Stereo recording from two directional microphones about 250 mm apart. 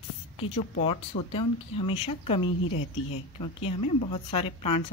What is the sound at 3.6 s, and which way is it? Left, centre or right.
Speech, left.